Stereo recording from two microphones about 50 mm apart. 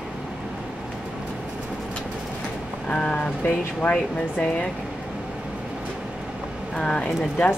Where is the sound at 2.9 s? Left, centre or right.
Left.